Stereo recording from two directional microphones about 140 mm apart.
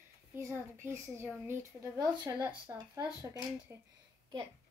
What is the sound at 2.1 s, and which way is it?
A woman's voice, 30° right (ahead or behind).